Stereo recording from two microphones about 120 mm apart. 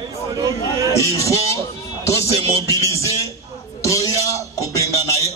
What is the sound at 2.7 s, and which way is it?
Speech, 25° left (ahead or behind).